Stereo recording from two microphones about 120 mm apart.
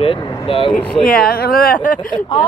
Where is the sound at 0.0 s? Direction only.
50° left (ahead or behind).